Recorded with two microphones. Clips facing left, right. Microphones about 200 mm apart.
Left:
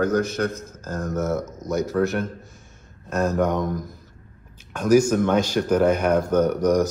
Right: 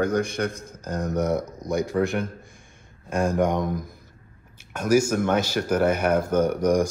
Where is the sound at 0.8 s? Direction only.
15° right (ahead or behind).